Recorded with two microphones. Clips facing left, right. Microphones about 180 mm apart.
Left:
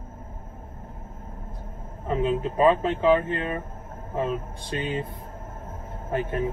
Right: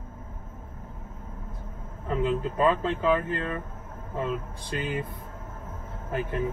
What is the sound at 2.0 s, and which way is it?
Speech, 25° left (ahead or behind).